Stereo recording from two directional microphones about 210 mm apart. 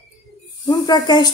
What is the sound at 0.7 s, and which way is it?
Speech, 20° left (ahead or behind).